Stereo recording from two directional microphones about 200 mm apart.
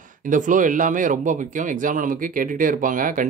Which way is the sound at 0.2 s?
40° right (ahead or behind).